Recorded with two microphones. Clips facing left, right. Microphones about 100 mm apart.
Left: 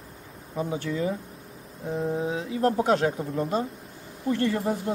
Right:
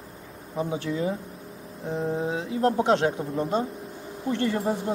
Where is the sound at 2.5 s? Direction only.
25° right (ahead or behind).